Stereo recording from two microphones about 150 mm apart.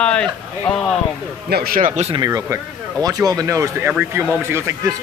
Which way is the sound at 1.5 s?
80° right.